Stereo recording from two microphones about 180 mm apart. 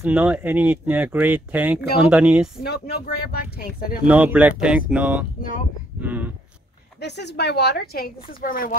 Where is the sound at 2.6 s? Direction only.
60° left (ahead or behind).